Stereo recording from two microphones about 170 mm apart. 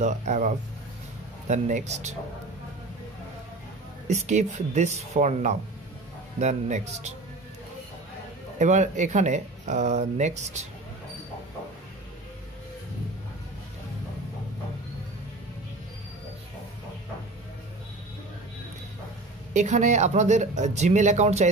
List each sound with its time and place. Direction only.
0.0 s speech: 45° right (ahead or behind)
4.1 s speech: 45° right (ahead or behind)
8.5 s speech: 45° right (ahead or behind)
19.5 s speech: 45° right (ahead or behind)